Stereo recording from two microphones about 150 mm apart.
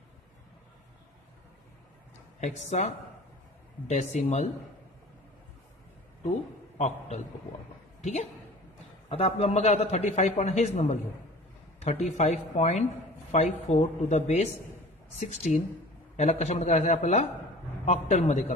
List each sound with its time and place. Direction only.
2.4 s a man's voice: 50° left (ahead or behind)
8.0 s a woman's voice: 50° left (ahead or behind)